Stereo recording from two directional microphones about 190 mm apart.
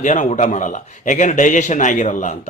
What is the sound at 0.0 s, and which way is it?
A man's voice, 40° left (ahead or behind).